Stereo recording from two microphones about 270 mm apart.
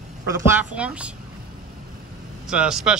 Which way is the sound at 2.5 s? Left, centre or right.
Centre.